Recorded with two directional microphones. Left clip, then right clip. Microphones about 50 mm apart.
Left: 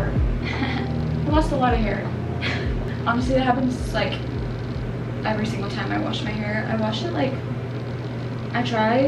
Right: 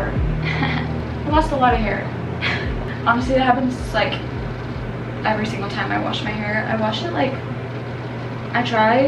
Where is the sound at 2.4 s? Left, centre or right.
Right.